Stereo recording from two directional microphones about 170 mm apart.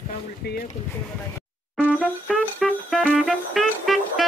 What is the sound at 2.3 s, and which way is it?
Music, centre (ahead or behind).